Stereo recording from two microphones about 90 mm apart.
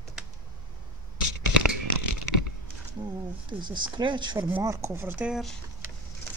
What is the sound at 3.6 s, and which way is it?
Speech, 60° right (ahead or behind).